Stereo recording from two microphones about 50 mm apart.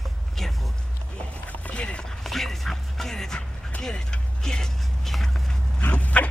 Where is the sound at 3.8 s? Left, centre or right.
Centre.